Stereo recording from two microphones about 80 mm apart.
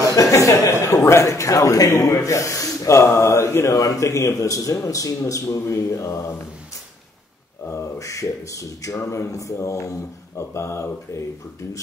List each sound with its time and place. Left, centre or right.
0.1 s a sound: left
0.8 s a man's voice: left
7.6 s a man's voice: left